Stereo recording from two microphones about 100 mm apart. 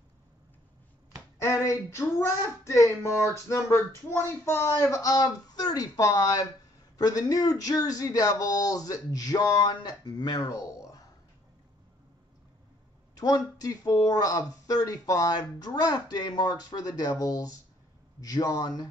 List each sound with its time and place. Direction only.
1.4 s speech: 30° left (ahead or behind)
13.1 s speech: 40° left (ahead or behind)